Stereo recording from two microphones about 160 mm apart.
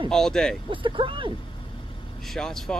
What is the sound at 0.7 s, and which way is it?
Speech, 30° right (ahead or behind).